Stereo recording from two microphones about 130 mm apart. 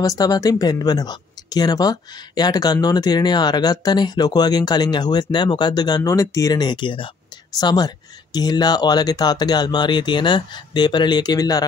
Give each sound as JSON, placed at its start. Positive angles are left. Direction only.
{"t": 0.0, "sound": "speech", "side_deg": 30}